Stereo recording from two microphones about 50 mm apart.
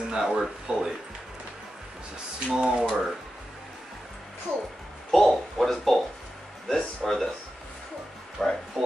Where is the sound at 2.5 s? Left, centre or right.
Centre.